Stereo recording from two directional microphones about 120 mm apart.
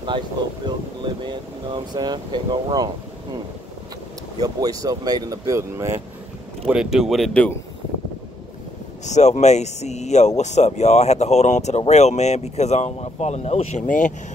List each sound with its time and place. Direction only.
0.7 s speech: 40° right (ahead or behind)
4.4 s speech: 30° right (ahead or behind)
6.7 s speech: 5° right (ahead or behind)
9.0 s speech: 70° left (ahead or behind); by 14.1 s 90° left